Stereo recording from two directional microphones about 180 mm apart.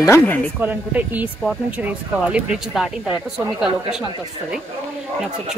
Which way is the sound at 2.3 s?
Centre (ahead or behind).